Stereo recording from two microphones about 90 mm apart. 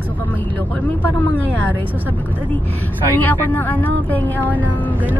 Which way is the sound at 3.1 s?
20° left (ahead or behind).